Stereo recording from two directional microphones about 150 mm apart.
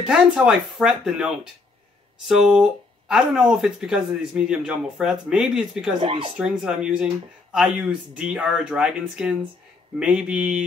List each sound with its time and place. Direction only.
0.0 s speech: 5° right (ahead or behind)
5.9 s speech: 35° right (ahead or behind)
6.6 s speech: 5° right (ahead or behind)
8.2 s speech: 5° right (ahead or behind)